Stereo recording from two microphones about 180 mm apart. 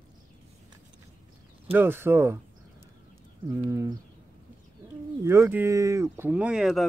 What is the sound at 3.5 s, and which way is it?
Speech, 15° right (ahead or behind).